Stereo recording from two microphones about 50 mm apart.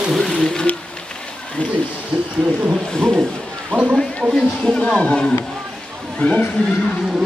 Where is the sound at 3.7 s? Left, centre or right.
Right.